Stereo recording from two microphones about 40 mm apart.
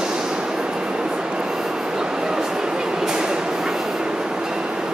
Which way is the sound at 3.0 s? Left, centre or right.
Centre.